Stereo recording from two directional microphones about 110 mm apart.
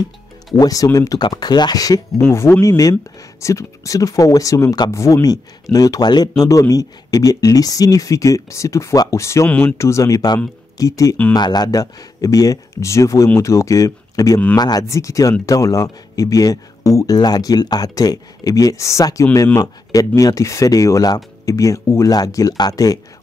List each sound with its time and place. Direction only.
0.6 s speech: 35° left (ahead or behind)
9.5 s speech: 10° left (ahead or behind)
9.8 s speech: 25° left (ahead or behind)